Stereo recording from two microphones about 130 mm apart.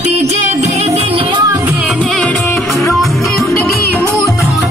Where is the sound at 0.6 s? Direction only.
55° right (ahead or behind).